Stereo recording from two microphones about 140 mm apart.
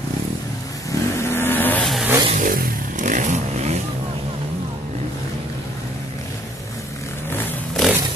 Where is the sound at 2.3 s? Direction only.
85° right; by 3.7 s 60° right (ahead or behind).